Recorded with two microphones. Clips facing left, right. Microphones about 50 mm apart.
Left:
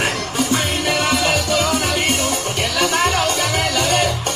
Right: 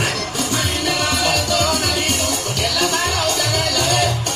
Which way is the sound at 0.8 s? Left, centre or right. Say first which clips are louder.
Left 1 dB; left.